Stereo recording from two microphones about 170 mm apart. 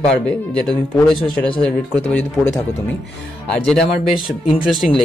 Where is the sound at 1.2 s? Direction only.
30° left (ahead or behind).